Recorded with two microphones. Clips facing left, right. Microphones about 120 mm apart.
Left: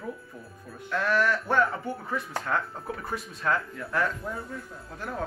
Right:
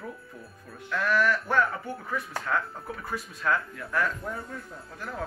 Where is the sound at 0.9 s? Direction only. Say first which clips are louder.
Even; 25° left (ahead or behind).